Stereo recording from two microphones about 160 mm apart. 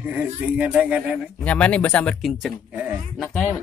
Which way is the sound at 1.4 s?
10° left (ahead or behind).